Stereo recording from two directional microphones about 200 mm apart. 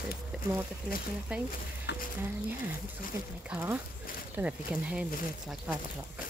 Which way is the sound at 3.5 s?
10° right (ahead or behind).